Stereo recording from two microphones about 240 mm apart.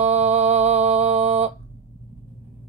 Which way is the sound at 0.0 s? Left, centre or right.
Right.